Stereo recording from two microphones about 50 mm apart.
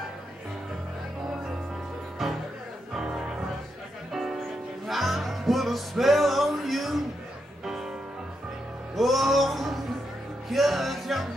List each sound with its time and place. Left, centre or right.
2.2 s music: centre
4.1 s music: centre
8.9 s music: centre